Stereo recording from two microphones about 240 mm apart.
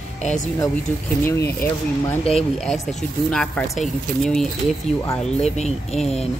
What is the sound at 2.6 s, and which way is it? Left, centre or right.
Speech, centre.